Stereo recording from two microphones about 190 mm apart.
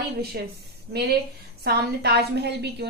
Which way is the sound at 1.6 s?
60° right (ahead or behind).